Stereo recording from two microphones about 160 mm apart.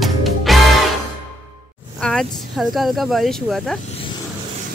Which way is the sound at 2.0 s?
Centre (ahead or behind).